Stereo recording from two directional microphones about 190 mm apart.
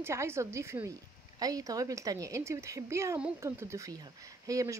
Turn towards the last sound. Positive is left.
turn(degrees=-15)  # may be behind; listen again after turning